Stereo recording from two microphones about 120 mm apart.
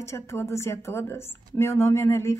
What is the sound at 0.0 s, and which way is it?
A woman's voice, 25° left (ahead or behind).